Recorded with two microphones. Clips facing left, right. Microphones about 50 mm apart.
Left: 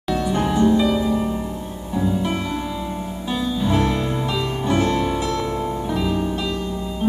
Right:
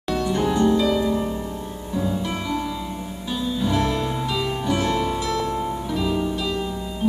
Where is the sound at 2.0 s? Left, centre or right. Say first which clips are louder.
Left 3 dB; centre.